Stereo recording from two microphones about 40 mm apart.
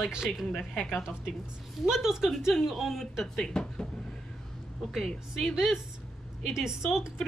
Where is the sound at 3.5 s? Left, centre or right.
Left.